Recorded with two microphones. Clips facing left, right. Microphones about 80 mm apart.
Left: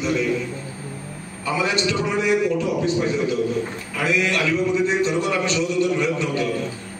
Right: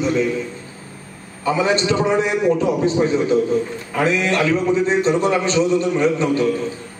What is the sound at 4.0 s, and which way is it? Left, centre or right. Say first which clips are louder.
A man's voice: right 4 dB; right.